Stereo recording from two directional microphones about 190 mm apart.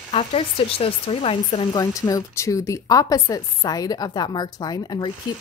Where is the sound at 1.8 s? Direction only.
20° left (ahead or behind).